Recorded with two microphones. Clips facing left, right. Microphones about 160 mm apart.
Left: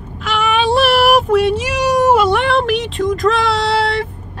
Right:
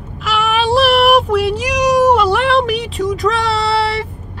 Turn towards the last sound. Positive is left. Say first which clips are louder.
# even
turn(degrees=0)  # may be behind; listen again after turning